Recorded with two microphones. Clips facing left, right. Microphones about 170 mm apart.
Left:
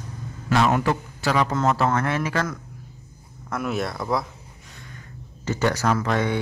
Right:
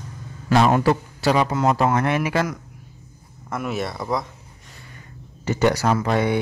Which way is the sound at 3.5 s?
Centre (ahead or behind).